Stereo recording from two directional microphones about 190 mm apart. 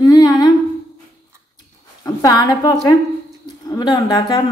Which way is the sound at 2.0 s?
20° left (ahead or behind).